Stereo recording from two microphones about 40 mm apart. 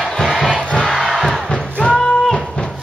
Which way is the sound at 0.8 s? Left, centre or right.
Centre.